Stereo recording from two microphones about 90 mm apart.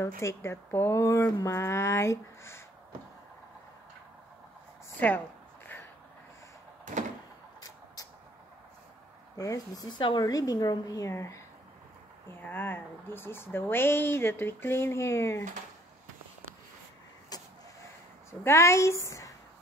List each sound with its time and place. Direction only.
0.0 s speech: 30° left (ahead or behind)
7.6 s a sound: 45° left (ahead or behind)
9.4 s a woman's voice: 40° left (ahead or behind)
12.3 s speech: 25° left (ahead or behind)
17.3 s vehicle: 45° left (ahead or behind)
18.4 s speech: 30° left (ahead or behind)